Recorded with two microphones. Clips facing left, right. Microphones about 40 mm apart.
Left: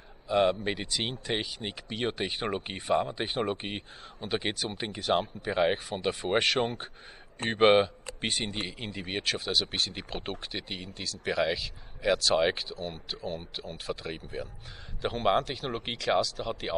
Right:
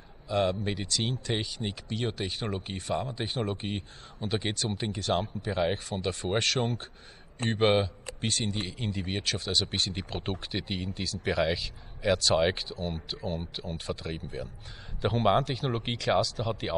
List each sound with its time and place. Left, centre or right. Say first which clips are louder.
0.3 s a man's voice: left 2 dB; centre